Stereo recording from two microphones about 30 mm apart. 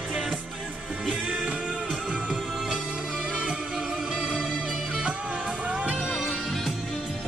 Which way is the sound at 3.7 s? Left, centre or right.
Right.